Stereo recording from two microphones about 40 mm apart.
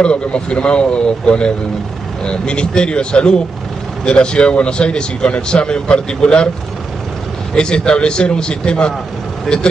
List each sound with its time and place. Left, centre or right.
0.0 s speech: left
7.5 s speech: left
9.5 s speech: centre